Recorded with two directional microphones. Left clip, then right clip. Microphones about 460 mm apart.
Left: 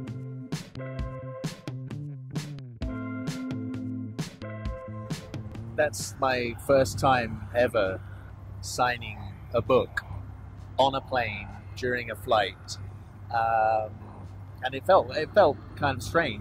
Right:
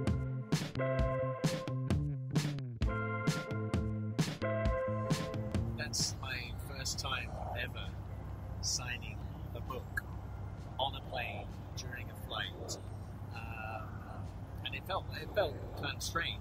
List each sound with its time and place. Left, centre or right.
0.0 s music: centre
6.2 s speech: left
8.6 s vehicle: left
10.8 s speech: left